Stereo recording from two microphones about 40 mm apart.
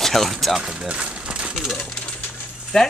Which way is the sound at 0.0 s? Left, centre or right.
Centre.